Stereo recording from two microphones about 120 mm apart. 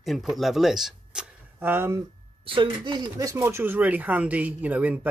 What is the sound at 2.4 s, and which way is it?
Speech, 45° right (ahead or behind).